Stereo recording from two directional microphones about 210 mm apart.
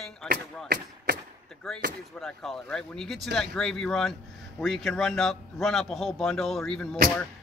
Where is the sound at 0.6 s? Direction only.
50° right (ahead or behind).